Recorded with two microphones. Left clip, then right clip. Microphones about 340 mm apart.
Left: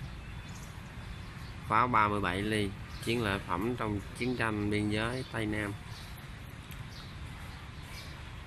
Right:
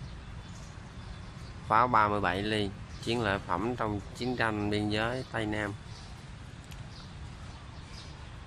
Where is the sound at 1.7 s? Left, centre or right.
Centre.